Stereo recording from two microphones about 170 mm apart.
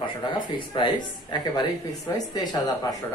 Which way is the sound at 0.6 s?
30° left (ahead or behind).